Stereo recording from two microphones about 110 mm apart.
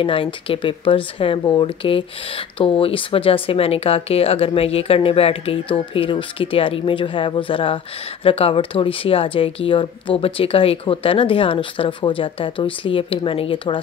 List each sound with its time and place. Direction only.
0.0 s speech: 55° left (ahead or behind)